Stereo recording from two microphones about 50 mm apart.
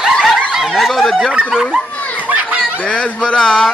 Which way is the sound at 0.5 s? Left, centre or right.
Centre.